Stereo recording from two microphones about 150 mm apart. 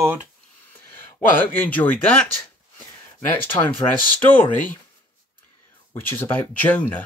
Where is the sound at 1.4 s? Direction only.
10° left (ahead or behind).